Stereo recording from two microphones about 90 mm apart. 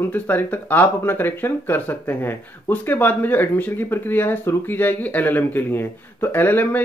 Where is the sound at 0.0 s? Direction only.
20° left (ahead or behind).